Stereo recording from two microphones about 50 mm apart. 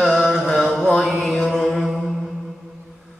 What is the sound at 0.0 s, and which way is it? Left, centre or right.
Chant, centre.